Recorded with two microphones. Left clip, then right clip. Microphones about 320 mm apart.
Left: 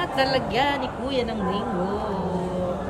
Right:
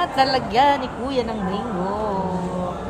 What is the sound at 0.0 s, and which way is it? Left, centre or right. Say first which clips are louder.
Speech: right 4 dB; centre.